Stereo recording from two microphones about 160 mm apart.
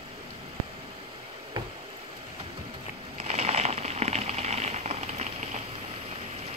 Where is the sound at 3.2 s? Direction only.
40° right (ahead or behind).